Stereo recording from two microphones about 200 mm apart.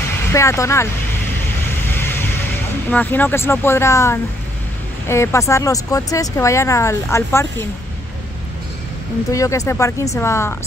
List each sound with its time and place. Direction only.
0.3 s speech: 15° left (ahead or behind)
2.0 s vehicle: 10° left (ahead or behind)
2.9 s speech: 10° left (ahead or behind)
9.3 s speech: 15° left (ahead or behind)